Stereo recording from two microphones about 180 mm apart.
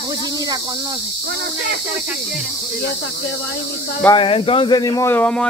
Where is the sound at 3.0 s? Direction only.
90° left.